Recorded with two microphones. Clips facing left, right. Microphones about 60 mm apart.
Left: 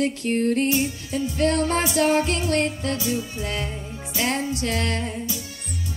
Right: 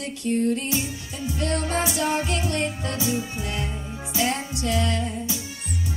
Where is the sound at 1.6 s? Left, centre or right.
Left.